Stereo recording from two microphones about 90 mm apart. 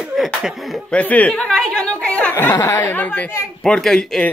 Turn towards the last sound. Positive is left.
turn(degrees=5)  # may be behind; listen again after turning